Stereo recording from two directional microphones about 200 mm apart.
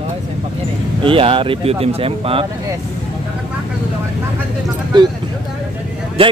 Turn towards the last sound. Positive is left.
turn(degrees=-30)  # may be behind; listen again after turning